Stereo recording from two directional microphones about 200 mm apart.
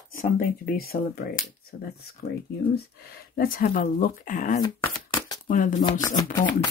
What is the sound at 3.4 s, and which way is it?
Speech, 45° left (ahead or behind).